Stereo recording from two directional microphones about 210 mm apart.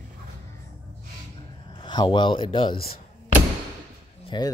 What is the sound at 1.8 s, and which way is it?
Speech, 20° left (ahead or behind).